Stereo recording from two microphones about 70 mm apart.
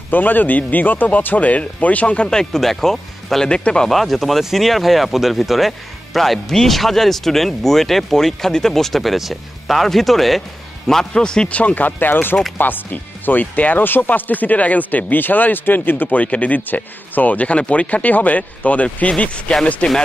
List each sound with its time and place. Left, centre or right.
0.1 s speech: left